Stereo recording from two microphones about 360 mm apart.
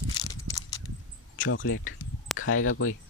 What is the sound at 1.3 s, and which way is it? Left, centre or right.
Speech, left.